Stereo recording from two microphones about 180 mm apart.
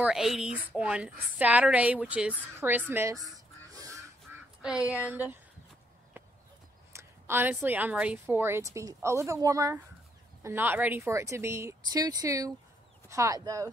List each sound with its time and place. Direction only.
0.0 s a woman's voice: centre (ahead or behind)
3.7 s duck: 20° right (ahead or behind)
4.6 s speech: 5° right (ahead or behind)
6.2 s a sound: 10° right (ahead or behind)
6.9 s a woman's voice: 15° right (ahead or behind)